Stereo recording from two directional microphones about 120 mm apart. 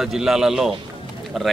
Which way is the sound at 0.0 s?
5° right (ahead or behind).